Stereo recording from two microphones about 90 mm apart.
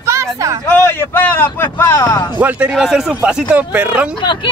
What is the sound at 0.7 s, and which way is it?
Speech, 25° left (ahead or behind).